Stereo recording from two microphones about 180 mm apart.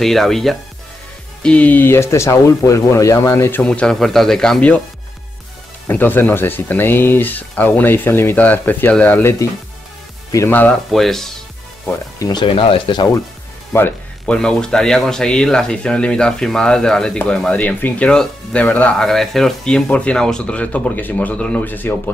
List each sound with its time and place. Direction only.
0.0 s speech: centre (ahead or behind)
5.9 s speech: 10° left (ahead or behind)
12.3 s speech: 25° left (ahead or behind)
13.7 s speech: 10° left (ahead or behind)